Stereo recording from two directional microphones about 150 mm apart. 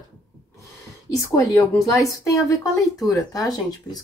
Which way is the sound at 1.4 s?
20° left (ahead or behind).